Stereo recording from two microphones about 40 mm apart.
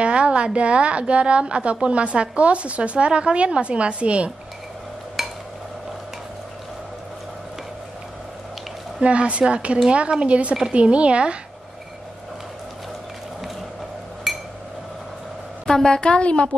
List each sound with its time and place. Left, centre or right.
0.0 s a woman's voice: right
5.2 s a sound: centre
9.0 s a woman's voice: right
14.3 s glass: centre
15.6 s a woman's voice: centre